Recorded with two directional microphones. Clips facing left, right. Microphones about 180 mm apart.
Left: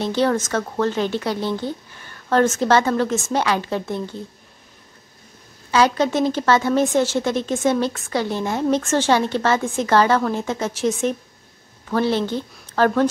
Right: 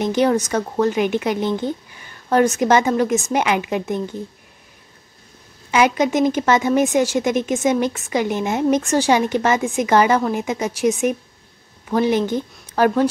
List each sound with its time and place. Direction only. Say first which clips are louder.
0.0 s a woman's voice: right 2 dB; 15° right (ahead or behind)
5.7 s a woman's voice: right 1 dB; 15° right (ahead or behind)